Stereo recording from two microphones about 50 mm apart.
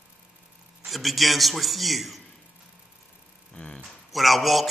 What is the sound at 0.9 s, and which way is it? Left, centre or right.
Speech, centre.